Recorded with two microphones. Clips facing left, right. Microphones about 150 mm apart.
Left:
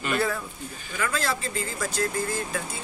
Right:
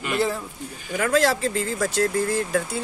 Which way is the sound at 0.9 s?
70° right (ahead or behind).